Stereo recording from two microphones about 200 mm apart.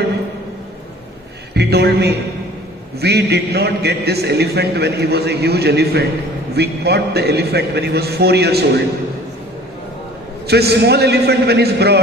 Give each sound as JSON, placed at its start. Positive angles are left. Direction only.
{"t": 1.5, "sound": "a man's voice", "side_deg": -55}
{"t": 10.4, "sound": "a man's voice", "side_deg": -55}